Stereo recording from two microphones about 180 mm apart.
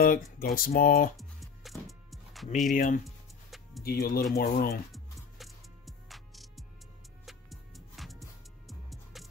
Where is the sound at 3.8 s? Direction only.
55° left (ahead or behind).